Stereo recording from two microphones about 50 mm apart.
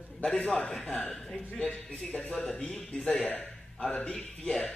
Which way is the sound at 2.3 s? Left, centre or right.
Centre.